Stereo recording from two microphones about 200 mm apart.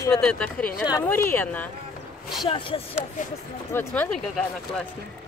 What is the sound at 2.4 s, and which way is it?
Speech, 25° left (ahead or behind).